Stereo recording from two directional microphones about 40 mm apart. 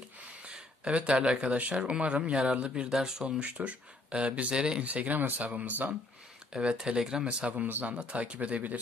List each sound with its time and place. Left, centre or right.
0.5 s speech: right
3.3 s speech: right
4.8 s speech: right
6.5 s speech: right
7.2 s speech: right